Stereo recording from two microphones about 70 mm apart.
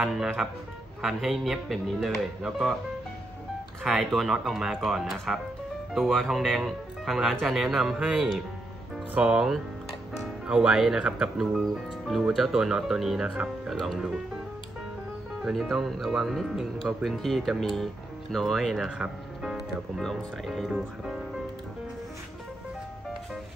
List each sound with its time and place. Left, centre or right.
0.0 s speech: centre
3.8 s speech: centre
9.1 s speech: centre
15.4 s speech: centre
18.9 s speech: centre
20.0 s speech: centre